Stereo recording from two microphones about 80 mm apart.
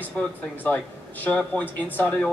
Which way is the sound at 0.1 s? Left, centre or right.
Centre.